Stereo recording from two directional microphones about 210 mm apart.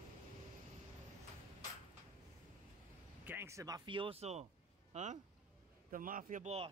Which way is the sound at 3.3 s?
10° right (ahead or behind).